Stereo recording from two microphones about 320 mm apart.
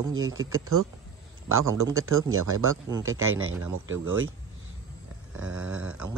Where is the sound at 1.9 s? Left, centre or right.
Right.